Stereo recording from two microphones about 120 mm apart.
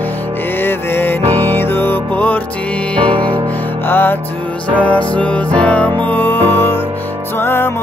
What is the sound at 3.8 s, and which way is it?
Music, 15° left (ahead or behind).